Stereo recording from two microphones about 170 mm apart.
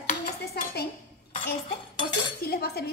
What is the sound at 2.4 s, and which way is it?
Cutlery, 65° left (ahead or behind).